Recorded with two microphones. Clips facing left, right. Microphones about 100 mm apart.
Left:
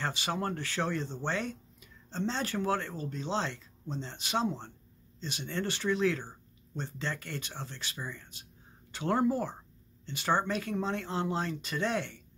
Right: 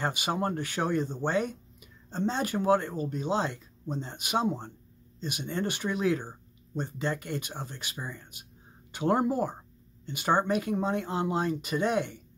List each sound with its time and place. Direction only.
0.0 s speech: 15° right (ahead or behind)